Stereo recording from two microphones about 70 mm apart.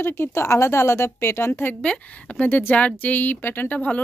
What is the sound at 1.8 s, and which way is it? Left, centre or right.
Speech, centre.